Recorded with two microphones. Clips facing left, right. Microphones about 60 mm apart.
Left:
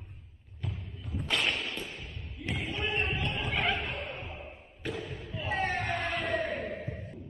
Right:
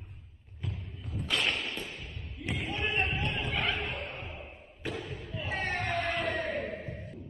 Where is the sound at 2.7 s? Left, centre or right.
Right.